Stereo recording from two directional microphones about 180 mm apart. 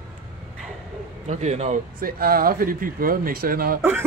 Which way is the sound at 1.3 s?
40° right (ahead or behind).